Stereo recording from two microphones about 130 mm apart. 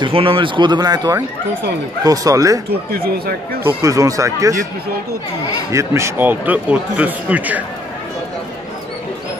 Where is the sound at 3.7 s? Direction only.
25° right (ahead or behind).